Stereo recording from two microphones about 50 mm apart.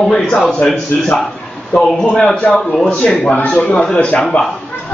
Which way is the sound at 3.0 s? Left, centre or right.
Centre.